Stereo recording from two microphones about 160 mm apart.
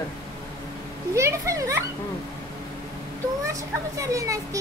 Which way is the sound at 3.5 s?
20° right (ahead or behind).